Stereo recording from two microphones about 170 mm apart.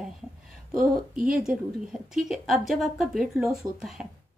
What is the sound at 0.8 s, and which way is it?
Speech, 55° right (ahead or behind).